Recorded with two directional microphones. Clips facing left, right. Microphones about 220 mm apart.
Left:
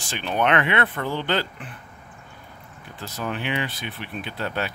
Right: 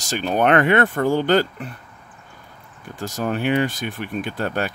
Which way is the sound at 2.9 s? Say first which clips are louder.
Right 6 dB; 45° right (ahead or behind).